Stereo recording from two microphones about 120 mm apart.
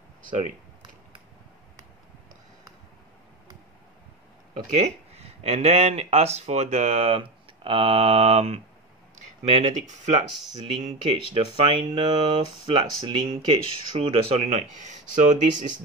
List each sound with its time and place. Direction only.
4.7 s speech: 60° right (ahead or behind); by 10.2 s 80° right
11.3 s speech: 50° right (ahead or behind); by 15.6 s 90° right